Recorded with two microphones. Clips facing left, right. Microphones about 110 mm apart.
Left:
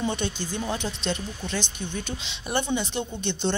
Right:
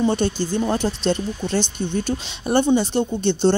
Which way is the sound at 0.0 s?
35° right (ahead or behind).